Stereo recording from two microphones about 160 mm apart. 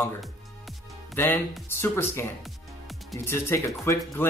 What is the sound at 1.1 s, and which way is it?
Speech, 15° left (ahead or behind).